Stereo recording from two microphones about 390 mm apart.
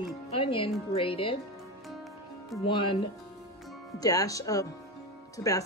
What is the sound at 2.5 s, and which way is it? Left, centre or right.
Speech, centre.